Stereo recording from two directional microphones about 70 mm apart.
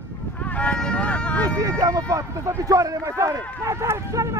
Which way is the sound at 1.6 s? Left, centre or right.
Right.